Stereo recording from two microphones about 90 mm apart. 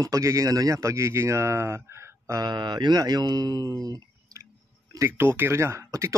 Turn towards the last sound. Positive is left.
turn(degrees=-35)  # may be behind; listen again after turning